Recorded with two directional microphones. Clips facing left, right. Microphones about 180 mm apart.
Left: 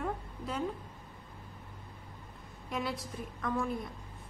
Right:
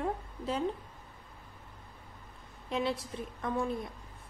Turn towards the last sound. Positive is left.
turn(degrees=-25)  # may be behind; listen again after turning